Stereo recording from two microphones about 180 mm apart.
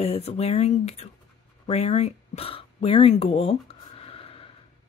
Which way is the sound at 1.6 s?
35° left (ahead or behind).